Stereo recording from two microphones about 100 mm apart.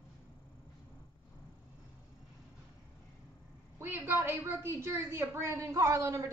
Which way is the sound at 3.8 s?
20° right (ahead or behind).